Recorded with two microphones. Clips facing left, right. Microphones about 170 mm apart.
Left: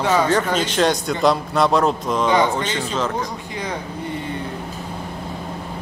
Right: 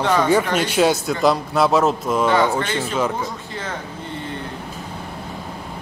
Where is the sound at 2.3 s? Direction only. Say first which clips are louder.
Left 1 dB; 15° left (ahead or behind).